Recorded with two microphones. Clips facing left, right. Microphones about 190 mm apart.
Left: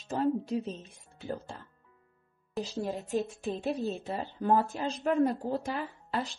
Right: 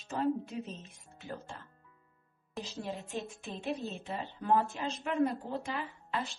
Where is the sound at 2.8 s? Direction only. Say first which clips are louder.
Left 7 dB; 40° left (ahead or behind).